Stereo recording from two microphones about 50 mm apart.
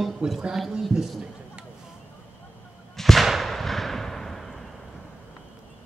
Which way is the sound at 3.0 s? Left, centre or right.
Centre.